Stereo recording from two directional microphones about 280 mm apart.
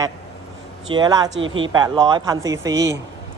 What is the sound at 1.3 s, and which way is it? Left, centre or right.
Speech, right.